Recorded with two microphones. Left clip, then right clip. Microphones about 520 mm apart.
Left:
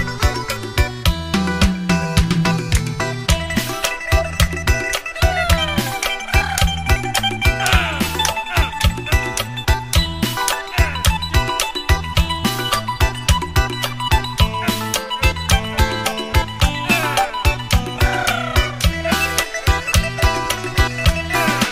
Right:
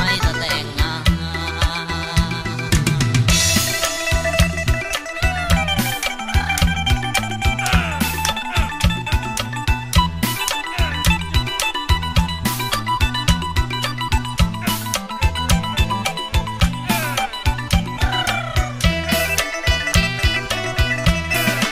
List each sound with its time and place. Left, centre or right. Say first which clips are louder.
5.4 s music: left 3 dB; right
7.6 s music: left 3 dB; right